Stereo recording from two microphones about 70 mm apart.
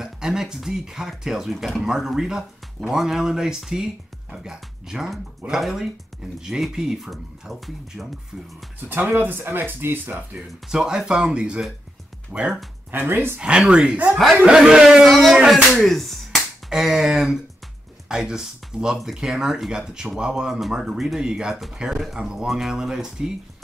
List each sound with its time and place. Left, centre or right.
0.0 s speech: centre
8.8 s speech: right
10.7 s speech: centre
12.9 s speech: right
13.4 s speech: centre
15.3 s finger snapping: centre
16.7 s speech: centre